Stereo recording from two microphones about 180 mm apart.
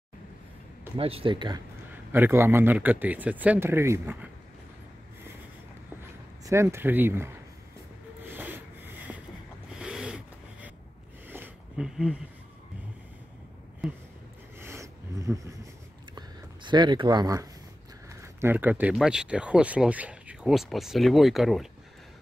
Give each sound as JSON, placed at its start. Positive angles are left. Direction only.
{"t": 0.9, "sound": "speech", "side_deg": -30}
{"t": 2.1, "sound": "a man's voice", "side_deg": -10}
{"t": 6.4, "sound": "a man's voice", "side_deg": -15}
{"t": 8.2, "sound": "rub", "side_deg": -10}
{"t": 9.7, "sound": "snort", "side_deg": -5}
{"t": 11.2, "sound": "a sound", "side_deg": -10}
{"t": 13.8, "sound": "a sound", "side_deg": 0}
{"t": 14.6, "sound": "a sound", "side_deg": -15}
{"t": 18.2, "sound": "speech", "side_deg": -10}